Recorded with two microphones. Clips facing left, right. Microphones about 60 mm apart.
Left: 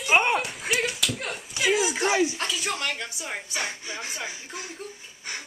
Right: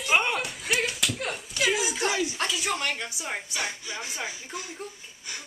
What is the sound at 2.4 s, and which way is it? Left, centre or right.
A woman's voice, centre.